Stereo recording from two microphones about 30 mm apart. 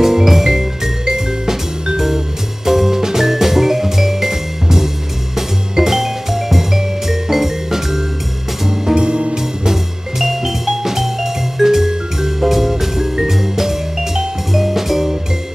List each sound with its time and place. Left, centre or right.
0.0 s music: centre
8.9 s music: right
9.7 s music: centre